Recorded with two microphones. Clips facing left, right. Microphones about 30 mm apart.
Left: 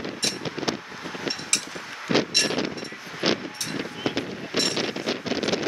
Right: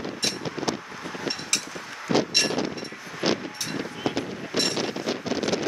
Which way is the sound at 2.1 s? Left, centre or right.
Left.